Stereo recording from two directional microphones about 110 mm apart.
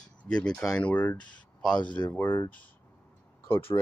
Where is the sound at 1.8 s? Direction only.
45° left (ahead or behind).